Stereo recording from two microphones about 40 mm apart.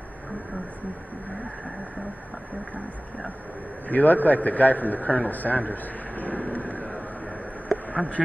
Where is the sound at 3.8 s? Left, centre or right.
Left.